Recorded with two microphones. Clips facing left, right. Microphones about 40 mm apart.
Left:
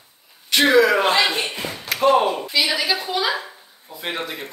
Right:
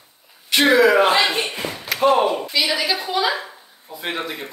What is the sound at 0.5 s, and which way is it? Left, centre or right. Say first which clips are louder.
Speech: right 1 dB; centre.